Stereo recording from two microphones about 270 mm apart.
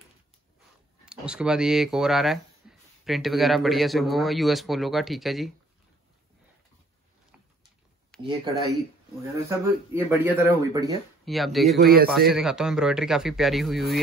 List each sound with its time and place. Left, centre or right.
1.0 s a man's voice: centre
2.6 s a sound: centre
3.1 s a man's voice: centre
8.1 s a sound: centre
9.5 s speech: centre
11.2 s a man's voice: centre
11.8 s speech: right
12.3 s a man's voice: centre